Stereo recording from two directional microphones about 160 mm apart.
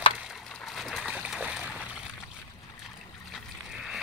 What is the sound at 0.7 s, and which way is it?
Splash, centre (ahead or behind).